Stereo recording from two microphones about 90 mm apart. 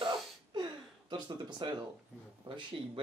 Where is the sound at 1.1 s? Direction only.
55° right (ahead or behind).